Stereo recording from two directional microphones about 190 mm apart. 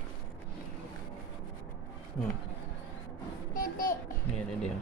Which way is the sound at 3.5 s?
45° left (ahead or behind).